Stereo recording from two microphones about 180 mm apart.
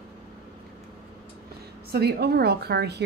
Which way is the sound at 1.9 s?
60° right (ahead or behind).